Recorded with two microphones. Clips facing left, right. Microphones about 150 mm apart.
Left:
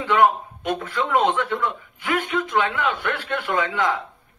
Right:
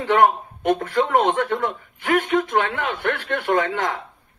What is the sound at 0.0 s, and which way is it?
Speech, 45° right (ahead or behind).